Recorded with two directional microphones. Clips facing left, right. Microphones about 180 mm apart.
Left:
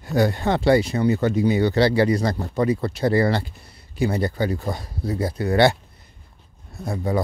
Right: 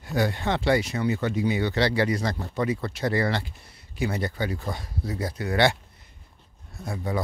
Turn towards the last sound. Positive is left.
turn(degrees=35)  # may be behind; listen again after turning